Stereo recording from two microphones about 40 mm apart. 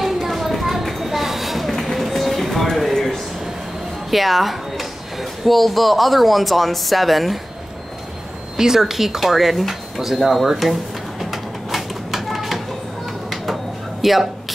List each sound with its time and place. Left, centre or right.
0.0 s a sound: centre
4.1 s speech: centre
8.5 s speech: centre
10.6 s bird: centre
14.0 s speech: centre